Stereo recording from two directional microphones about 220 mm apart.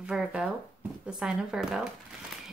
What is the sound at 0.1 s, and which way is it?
Speech, 5° right (ahead or behind).